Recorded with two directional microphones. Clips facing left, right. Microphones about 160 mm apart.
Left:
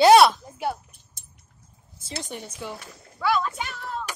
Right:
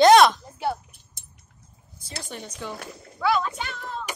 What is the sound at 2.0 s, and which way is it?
A woman's voice, 20° left (ahead or behind).